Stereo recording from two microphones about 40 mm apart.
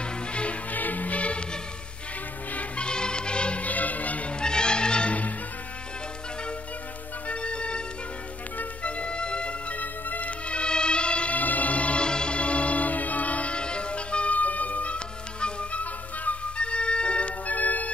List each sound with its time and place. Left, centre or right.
0.0 s music: left
0.7 s music: left
2.5 s music: left
3.6 s music: left
4.4 s music: left
7.2 s music: left
10.0 s music: left
10.5 s music: left
11.3 s music: left
16.5 s organ: left
17.5 s music: left